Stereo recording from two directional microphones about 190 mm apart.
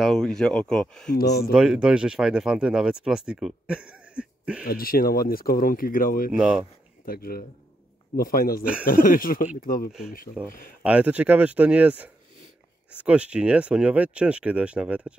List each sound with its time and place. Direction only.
0.0 s speech: centre (ahead or behind)
1.1 s speech: 55° left (ahead or behind)
1.5 s speech: 5° right (ahead or behind)
4.6 s speech: 50° left (ahead or behind)
6.3 s speech: 5° right (ahead or behind)
7.1 s speech: 50° left (ahead or behind)
10.4 s speech: 5° right (ahead or behind)